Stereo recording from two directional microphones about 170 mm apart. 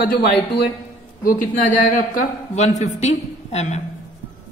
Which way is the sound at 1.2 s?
50° left (ahead or behind).